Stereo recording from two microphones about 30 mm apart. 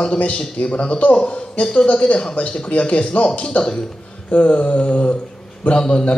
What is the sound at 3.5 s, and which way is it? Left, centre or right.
Speech, left.